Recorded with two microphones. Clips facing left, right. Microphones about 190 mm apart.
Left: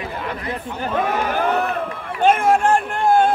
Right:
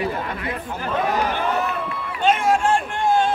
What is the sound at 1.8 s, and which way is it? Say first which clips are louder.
Run: left 4 dB; 50° left (ahead or behind).